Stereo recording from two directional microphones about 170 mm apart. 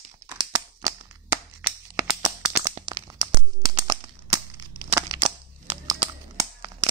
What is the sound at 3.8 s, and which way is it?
Cap gun, 25° right (ahead or behind).